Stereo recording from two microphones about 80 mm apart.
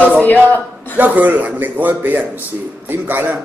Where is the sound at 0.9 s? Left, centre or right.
Right.